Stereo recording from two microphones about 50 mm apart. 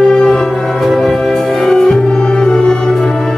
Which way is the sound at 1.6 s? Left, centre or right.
Centre.